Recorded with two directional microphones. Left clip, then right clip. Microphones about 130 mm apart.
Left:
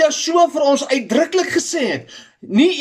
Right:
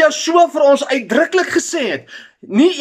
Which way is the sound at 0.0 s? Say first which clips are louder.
Right 2 dB; 20° left (ahead or behind).